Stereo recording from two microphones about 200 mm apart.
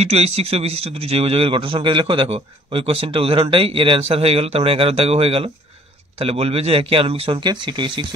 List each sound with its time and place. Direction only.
0.0 s a man's voice: 30° right (ahead or behind)